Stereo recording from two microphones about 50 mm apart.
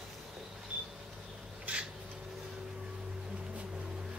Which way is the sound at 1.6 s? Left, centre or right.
Right.